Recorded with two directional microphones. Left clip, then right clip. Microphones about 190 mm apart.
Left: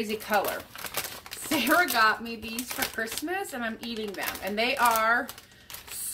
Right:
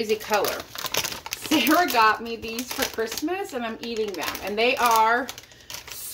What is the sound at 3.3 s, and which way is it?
Speech, 20° left (ahead or behind).